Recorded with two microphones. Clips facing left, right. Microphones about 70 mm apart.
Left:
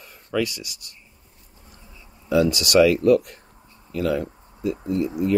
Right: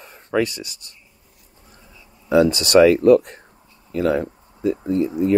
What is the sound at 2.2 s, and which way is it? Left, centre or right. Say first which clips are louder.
Speech: right 4 dB; right.